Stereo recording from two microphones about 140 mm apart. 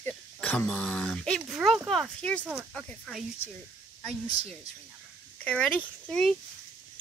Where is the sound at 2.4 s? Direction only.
10° right (ahead or behind).